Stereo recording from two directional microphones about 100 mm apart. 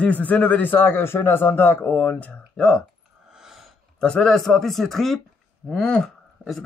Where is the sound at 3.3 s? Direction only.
5° right (ahead or behind).